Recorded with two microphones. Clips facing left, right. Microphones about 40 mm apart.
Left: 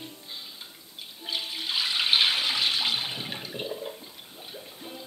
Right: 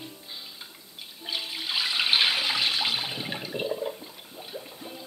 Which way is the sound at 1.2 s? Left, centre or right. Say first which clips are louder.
Even; centre.